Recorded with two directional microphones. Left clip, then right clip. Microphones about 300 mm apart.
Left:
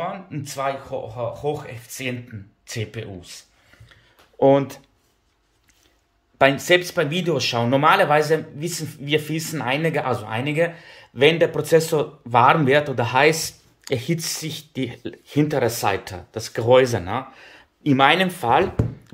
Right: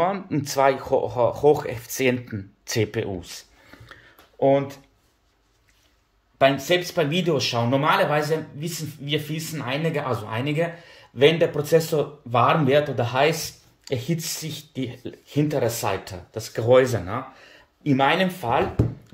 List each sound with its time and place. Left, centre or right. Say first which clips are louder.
0.0 s speech: right 6 dB; centre
4.4 s speech: left 3 dB; centre
6.3 s speech: left 3 dB; centre